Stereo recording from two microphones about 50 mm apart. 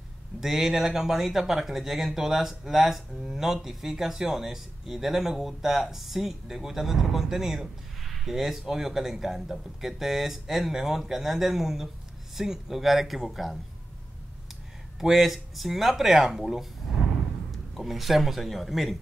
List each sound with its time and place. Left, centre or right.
0.4 s speech: centre
15.0 s a man's voice: centre